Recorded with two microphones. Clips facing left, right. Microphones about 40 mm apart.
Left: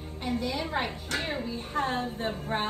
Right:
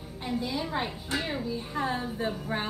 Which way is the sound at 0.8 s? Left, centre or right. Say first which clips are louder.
Even; left.